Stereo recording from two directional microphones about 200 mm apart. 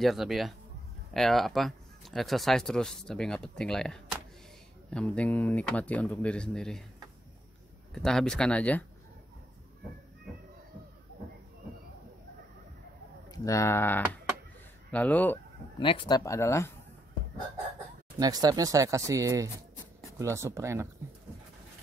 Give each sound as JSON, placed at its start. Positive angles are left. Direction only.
{"t": 0.0, "sound": "speech", "side_deg": 0}
{"t": 7.9, "sound": "speech", "side_deg": 0}
{"t": 13.3, "sound": "speech", "side_deg": 15}
{"t": 15.8, "sound": "speech", "side_deg": 25}
{"t": 18.2, "sound": "speech", "side_deg": -20}